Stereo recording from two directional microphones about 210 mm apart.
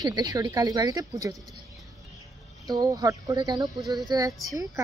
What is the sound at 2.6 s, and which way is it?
Speech, 20° right (ahead or behind).